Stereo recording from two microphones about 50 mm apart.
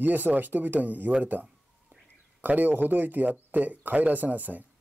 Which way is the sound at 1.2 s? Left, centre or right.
Right.